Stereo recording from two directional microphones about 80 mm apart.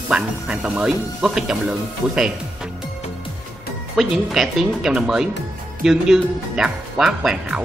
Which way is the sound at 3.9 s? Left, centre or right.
Centre.